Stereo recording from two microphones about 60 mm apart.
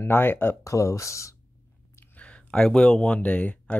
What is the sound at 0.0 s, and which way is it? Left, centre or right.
Speech, left.